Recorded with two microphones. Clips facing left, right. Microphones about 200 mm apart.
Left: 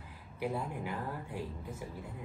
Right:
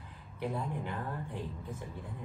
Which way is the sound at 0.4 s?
5° left (ahead or behind).